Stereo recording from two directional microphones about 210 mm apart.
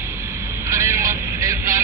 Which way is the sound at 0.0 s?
10° right (ahead or behind).